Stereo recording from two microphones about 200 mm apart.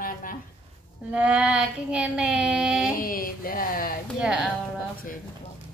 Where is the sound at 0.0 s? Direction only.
45° left (ahead or behind).